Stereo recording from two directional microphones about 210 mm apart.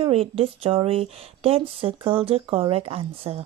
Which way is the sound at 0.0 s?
25° right (ahead or behind).